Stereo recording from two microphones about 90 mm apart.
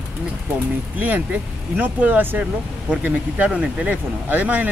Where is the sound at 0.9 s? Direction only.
20° right (ahead or behind).